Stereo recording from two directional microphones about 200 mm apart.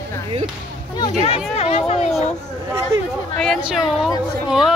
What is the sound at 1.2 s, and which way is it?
Speech, 30° left (ahead or behind).